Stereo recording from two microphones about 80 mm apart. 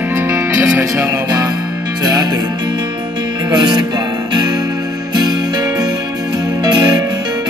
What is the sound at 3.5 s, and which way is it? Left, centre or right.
Music, right.